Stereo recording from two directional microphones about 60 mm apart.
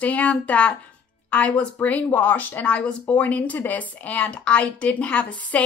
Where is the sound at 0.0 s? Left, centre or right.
Left.